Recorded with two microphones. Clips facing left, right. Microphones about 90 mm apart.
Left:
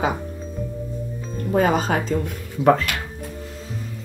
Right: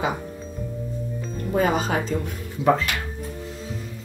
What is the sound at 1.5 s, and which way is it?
A woman's voice, 40° left (ahead or behind).